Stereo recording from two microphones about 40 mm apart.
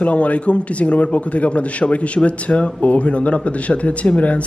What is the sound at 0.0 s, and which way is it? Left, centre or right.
A man's voice, left.